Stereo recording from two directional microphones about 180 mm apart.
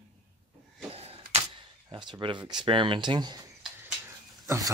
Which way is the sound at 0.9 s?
35° right (ahead or behind).